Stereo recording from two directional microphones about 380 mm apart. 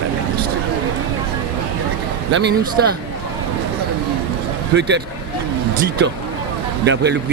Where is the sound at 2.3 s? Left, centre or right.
Right.